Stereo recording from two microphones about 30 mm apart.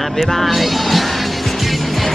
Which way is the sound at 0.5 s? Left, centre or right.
Centre.